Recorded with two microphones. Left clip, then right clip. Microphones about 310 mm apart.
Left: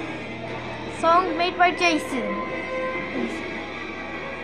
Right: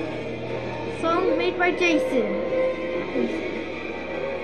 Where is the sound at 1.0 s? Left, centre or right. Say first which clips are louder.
Left 3 dB; centre.